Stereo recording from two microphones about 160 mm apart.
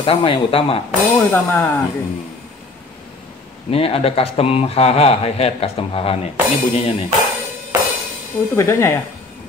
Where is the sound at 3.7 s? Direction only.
35° left (ahead or behind).